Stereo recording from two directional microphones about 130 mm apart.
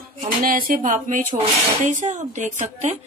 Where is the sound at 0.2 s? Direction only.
90° right.